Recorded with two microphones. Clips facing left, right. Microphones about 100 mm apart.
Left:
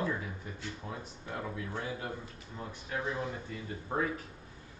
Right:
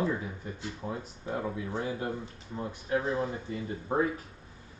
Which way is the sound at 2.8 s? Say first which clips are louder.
Right 6 dB; 30° right (ahead or behind).